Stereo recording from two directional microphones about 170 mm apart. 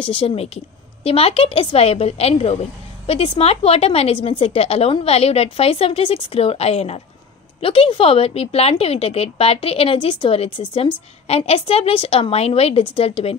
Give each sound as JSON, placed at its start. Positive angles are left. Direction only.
{"t": 0.0, "sound": "a woman's voice", "side_deg": 30}